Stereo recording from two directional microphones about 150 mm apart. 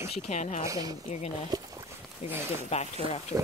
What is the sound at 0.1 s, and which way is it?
Speech, 50° left (ahead or behind).